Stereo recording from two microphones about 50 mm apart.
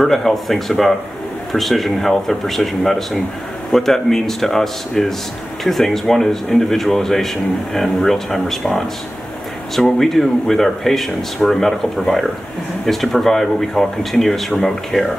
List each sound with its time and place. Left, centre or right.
0.0 s speech: centre